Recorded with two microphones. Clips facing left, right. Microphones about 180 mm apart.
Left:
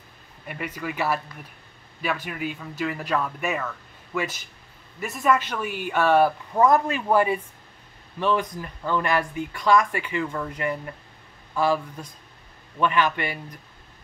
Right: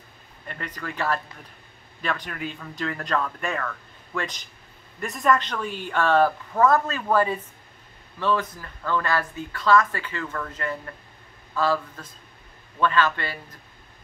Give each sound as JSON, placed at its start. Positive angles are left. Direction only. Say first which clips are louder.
{"t": 0.5, "sound": "speech", "louder": "left 3 dB", "side_deg": 10}